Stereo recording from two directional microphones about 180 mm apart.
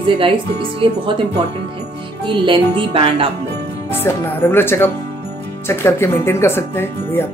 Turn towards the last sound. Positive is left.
turn(degrees=10)  # may be behind; listen again after turning